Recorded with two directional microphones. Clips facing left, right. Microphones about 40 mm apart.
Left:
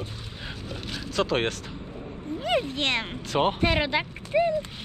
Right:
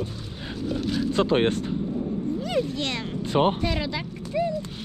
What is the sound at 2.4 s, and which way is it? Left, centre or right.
Speech, left.